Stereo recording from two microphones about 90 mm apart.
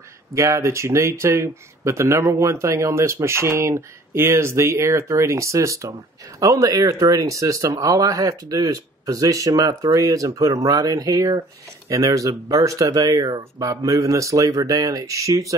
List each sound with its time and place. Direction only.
0.3 s speech: 35° right (ahead or behind)